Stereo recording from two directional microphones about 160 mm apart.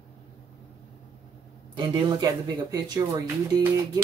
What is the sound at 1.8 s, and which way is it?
Speech, 30° right (ahead or behind).